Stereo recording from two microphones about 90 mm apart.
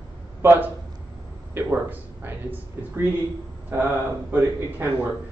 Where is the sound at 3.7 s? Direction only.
25° right (ahead or behind).